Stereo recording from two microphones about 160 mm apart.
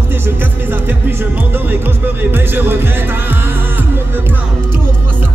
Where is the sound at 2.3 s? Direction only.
15° right (ahead or behind).